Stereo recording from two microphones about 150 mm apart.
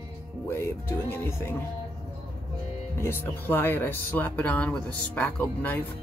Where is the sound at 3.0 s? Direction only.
15° left (ahead or behind).